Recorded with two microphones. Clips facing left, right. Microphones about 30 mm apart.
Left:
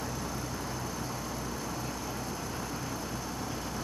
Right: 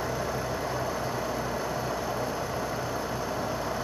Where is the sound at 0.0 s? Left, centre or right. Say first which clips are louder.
Right 6 dB; centre.